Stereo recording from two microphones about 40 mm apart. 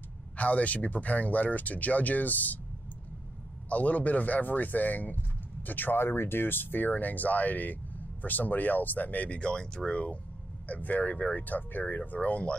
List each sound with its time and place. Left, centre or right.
0.4 s speech: left
3.6 s speech: left
5.9 s speech: left
9.4 s speech: left
10.7 s speech: left
12.0 s speech: left